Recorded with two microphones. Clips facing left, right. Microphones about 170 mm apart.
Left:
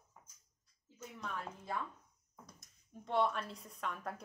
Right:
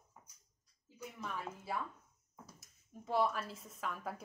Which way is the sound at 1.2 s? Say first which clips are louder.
Even; 5° right (ahead or behind).